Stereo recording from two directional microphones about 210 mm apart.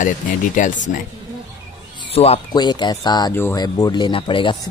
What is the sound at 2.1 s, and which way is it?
Speech, 30° left (ahead or behind).